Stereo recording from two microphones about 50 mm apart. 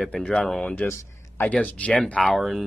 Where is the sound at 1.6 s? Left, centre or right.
Left.